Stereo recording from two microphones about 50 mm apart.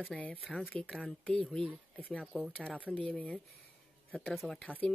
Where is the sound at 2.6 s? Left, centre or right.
Left.